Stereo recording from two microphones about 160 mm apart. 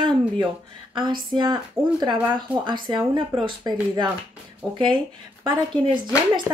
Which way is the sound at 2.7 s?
30° right (ahead or behind).